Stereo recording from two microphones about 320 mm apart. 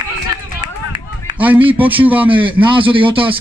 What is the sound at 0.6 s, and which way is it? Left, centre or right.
Run, centre.